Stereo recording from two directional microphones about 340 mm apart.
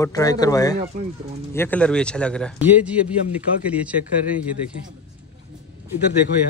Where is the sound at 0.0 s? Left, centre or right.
Centre.